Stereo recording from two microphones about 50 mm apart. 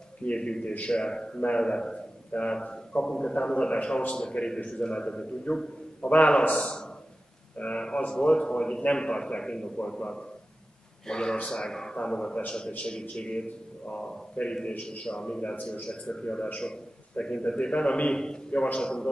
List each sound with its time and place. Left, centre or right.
0.2 s a man's voice: left